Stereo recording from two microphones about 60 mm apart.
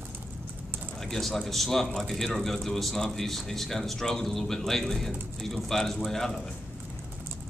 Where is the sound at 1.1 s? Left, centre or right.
Centre.